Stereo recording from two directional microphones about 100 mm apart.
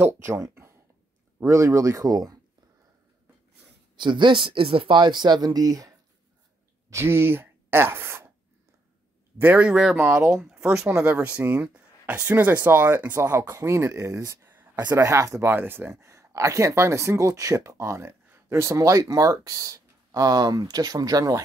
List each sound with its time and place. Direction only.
0.0 s speech: 30° right (ahead or behind)
3.9 s speech: 50° right (ahead or behind); by 5.9 s 35° right (ahead or behind)
6.9 s speech: 25° right (ahead or behind)
9.4 s speech: 15° right (ahead or behind); by 21.4 s 40° right (ahead or behind)